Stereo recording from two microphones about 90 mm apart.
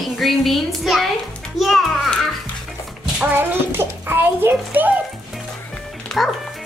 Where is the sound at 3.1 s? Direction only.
15° right (ahead or behind).